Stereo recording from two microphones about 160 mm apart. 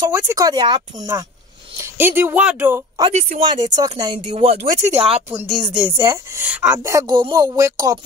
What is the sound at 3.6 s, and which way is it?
Speech, 25° right (ahead or behind).